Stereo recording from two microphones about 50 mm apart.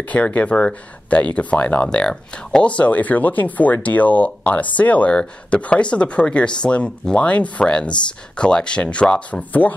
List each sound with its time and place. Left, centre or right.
0.1 s speech: left
9.4 s speech: left